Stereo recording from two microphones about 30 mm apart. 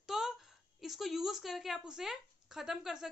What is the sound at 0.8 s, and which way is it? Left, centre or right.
A woman's voice, centre.